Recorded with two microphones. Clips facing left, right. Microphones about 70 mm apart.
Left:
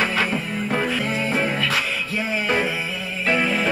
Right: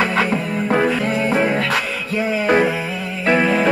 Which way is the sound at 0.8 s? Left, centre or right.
Right.